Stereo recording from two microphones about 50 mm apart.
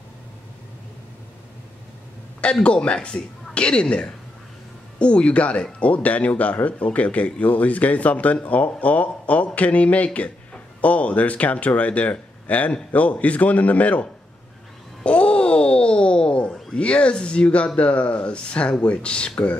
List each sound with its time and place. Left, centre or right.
2.4 s speech: left
15.0 s wail: left
16.7 s speech: left